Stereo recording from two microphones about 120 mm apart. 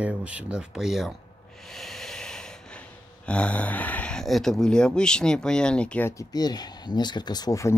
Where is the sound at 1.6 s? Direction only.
Centre (ahead or behind).